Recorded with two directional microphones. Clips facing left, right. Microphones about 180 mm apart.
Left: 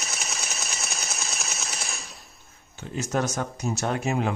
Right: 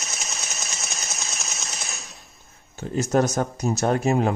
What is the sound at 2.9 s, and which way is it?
Speech, 40° right (ahead or behind).